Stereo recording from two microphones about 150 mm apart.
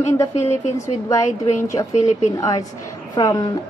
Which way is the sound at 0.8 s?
20° left (ahead or behind).